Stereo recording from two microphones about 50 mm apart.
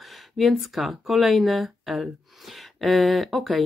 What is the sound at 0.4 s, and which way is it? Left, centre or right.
Speech, centre.